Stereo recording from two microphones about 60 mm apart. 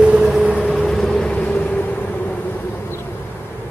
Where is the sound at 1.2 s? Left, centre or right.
Centre.